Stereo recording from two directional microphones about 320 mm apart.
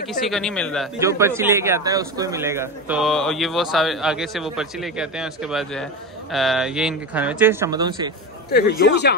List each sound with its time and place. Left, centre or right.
0.2 s a man's voice: centre
0.9 s a man's voice: centre
8.5 s speech: left